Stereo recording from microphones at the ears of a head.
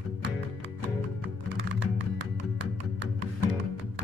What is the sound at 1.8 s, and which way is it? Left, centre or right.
Music, left.